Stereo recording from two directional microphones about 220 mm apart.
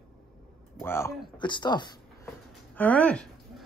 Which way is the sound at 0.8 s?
15° left (ahead or behind).